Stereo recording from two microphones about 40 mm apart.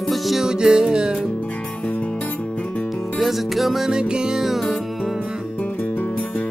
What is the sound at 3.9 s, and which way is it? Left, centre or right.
Music, right.